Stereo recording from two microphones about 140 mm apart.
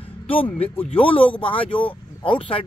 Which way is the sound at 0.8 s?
40° left (ahead or behind).